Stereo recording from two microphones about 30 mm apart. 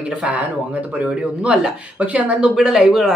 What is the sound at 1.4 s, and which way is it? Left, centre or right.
Speech, right.